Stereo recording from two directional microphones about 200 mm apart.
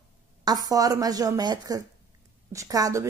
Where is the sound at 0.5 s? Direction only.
20° right (ahead or behind).